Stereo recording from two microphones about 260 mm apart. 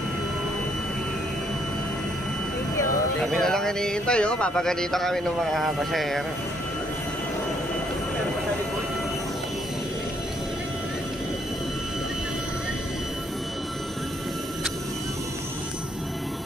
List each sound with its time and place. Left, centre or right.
2.8 s speech: centre